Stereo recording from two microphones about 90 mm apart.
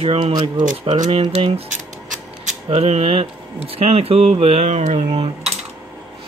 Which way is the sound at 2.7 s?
90° right.